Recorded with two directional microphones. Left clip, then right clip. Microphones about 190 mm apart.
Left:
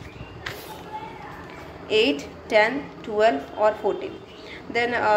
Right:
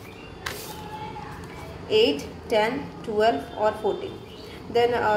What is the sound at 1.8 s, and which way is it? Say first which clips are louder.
A woman's voice: even; 15° left (ahead or behind).